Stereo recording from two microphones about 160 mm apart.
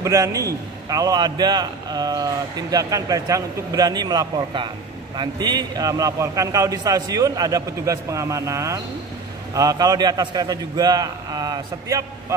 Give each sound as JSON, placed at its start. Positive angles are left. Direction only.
{"t": 0.0, "sound": "a man's voice", "side_deg": -20}